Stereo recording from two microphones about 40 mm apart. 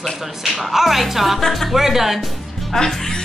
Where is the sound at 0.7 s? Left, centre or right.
Centre.